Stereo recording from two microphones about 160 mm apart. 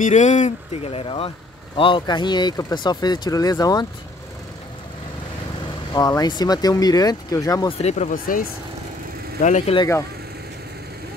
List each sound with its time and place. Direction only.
0.0 s speech: 50° left (ahead or behind); by 3.8 s 25° left (ahead or behind)
5.9 s speech: 25° left (ahead or behind)
7.8 s speech: 45° left (ahead or behind)
9.4 s speech: 50° left (ahead or behind)